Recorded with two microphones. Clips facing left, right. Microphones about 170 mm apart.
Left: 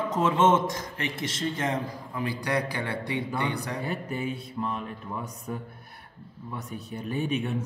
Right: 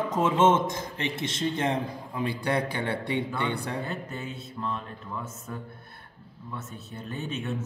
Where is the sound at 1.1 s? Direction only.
25° right (ahead or behind).